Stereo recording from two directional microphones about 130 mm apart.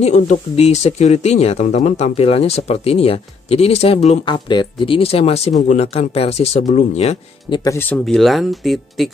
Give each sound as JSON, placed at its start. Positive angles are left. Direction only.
{"t": 0.0, "sound": "speech", "side_deg": 60}
{"t": 4.2, "sound": "speech", "side_deg": 35}
{"t": 7.4, "sound": "speech", "side_deg": 35}
{"t": 7.7, "sound": "speech", "side_deg": 15}
{"t": 8.0, "sound": "speech", "side_deg": 0}